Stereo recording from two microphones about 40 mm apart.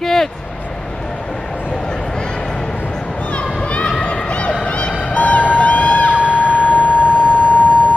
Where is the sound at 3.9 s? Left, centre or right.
Left.